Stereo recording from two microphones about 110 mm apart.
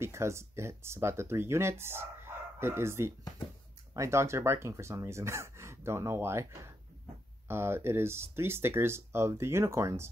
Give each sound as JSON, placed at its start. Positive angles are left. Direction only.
{"t": 0.0, "sound": "speech", "side_deg": -25}